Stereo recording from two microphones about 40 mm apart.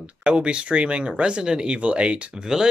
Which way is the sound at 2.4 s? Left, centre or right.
Centre.